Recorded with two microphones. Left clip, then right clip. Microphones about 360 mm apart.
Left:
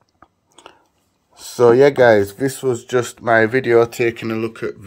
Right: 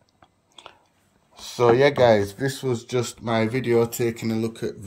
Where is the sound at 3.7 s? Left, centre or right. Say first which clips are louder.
Left 6 dB; left.